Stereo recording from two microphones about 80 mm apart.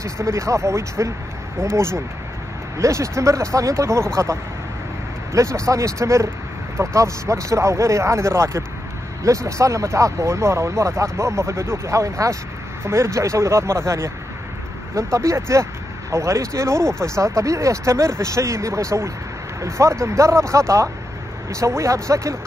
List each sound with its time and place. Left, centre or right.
0.0 s speech: right
15.1 s speech: right